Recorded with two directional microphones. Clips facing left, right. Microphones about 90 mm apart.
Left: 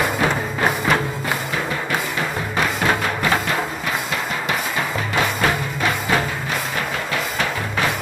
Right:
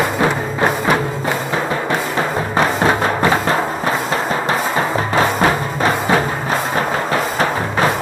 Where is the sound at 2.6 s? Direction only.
35° right (ahead or behind).